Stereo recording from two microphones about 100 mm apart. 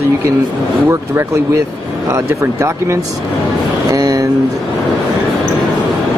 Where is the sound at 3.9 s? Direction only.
35° right (ahead or behind).